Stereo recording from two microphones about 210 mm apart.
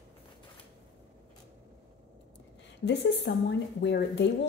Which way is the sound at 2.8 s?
55° left (ahead or behind).